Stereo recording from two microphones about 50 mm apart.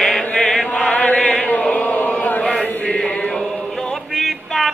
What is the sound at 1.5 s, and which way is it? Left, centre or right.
Chant, left.